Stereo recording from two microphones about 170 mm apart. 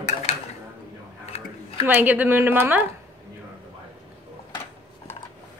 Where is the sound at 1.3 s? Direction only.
30° left (ahead or behind).